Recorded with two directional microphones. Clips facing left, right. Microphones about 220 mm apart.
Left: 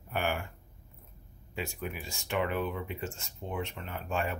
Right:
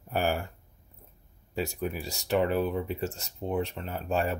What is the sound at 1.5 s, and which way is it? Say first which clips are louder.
Speech: right 6 dB; 40° right (ahead or behind).